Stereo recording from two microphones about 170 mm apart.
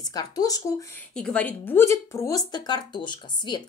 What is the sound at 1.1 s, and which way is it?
Speech, 5° left (ahead or behind).